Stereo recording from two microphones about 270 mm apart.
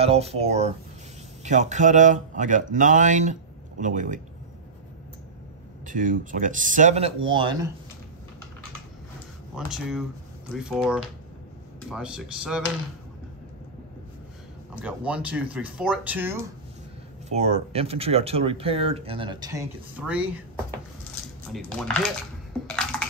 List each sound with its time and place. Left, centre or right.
0.0 s speech: right
5.9 s speech: right
9.6 s speech: centre
14.8 s speech: centre
17.3 s speech: right; by 20.4 s centre
21.5 s speech: centre
22.7 s a sound: centre